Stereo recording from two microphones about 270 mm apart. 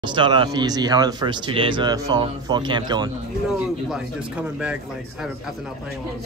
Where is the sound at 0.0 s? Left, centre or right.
Centre.